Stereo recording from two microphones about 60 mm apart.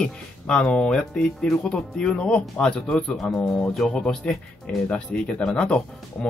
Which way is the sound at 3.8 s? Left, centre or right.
Centre.